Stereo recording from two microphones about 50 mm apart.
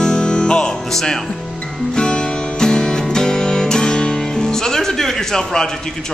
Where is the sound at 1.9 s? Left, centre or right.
Centre.